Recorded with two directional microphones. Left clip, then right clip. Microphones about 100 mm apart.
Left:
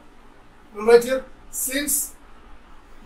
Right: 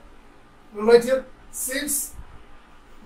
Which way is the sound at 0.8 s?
Centre (ahead or behind).